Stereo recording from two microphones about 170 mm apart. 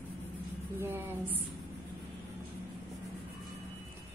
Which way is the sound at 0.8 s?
15° right (ahead or behind).